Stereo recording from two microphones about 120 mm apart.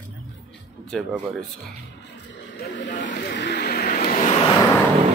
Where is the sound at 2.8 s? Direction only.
90° left.